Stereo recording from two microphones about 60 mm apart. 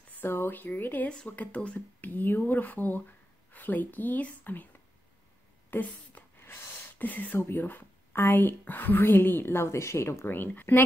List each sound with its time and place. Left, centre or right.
0.1 s speech: left
1.0 s speech: centre
1.3 s speech: left
5.7 s a sound: left
7.1 s speech: left
7.3 s speech: left